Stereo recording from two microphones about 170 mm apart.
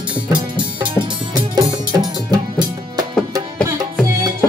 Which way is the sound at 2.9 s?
20° right (ahead or behind).